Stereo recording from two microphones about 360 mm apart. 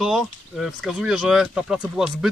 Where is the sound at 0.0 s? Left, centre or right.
Centre.